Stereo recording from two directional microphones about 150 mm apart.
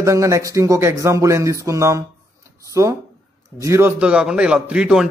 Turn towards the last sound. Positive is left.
turn(degrees=-5)  # may be behind; listen again after turning